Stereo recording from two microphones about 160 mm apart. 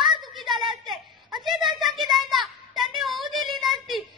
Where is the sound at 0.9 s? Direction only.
Centre (ahead or behind).